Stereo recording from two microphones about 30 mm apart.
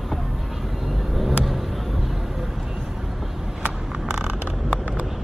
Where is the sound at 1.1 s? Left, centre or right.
Centre.